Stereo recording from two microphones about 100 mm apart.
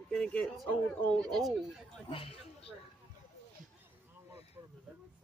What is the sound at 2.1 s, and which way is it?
Speech, 70° left (ahead or behind).